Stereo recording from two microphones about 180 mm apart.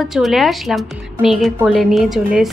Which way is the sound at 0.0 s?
Centre (ahead or behind).